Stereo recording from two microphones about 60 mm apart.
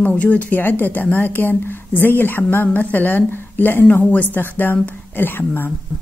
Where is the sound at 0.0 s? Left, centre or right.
Left.